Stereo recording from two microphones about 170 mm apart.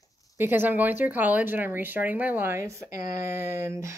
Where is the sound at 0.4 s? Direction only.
10° right (ahead or behind).